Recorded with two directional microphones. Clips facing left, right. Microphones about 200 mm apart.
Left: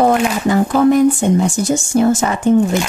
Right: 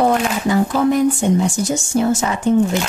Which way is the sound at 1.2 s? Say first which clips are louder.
Left 2 dB; 50° left (ahead or behind).